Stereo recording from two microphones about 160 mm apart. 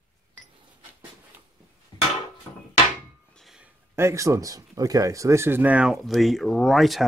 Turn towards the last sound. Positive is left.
turn(degrees=0)  # may be behind; listen again after turning